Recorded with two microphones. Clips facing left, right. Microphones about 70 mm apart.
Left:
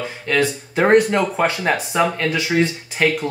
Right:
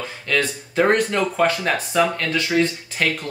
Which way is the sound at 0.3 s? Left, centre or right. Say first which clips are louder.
Left 3 dB; left.